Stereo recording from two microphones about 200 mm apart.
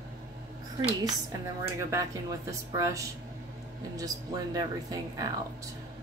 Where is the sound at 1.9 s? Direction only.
15° right (ahead or behind).